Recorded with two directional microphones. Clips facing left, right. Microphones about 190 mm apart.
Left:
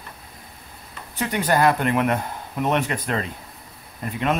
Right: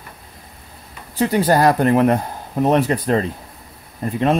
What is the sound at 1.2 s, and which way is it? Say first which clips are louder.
Speech: right 5 dB; 35° right (ahead or behind).